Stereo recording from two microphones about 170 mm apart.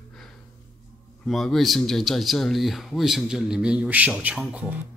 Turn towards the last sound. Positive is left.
turn(degrees=-10)  # may be behind; listen again after turning